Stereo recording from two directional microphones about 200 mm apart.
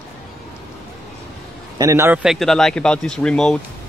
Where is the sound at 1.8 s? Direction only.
15° right (ahead or behind); by 3.6 s 5° left (ahead or behind).